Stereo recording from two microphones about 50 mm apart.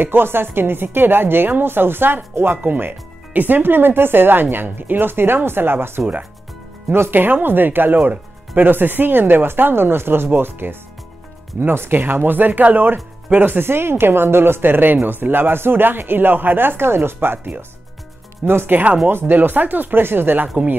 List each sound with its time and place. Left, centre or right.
0.0 s speech: right
2.6 s speech: right
18.4 s speech: right